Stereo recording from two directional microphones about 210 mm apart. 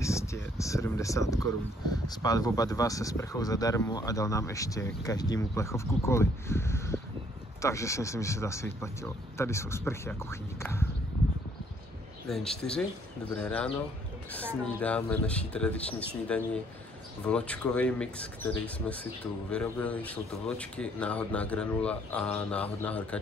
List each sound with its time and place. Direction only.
0.0 s speech: 15° left (ahead or behind)
12.3 s speech: centre (ahead or behind)